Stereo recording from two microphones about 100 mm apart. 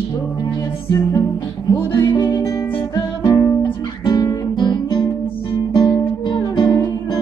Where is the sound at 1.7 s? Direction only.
25° left (ahead or behind).